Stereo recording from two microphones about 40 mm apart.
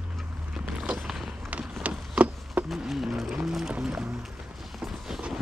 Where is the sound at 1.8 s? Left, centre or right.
Right.